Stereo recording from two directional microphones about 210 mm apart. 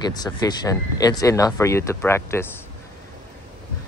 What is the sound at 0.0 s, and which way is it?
Speech, 20° left (ahead or behind).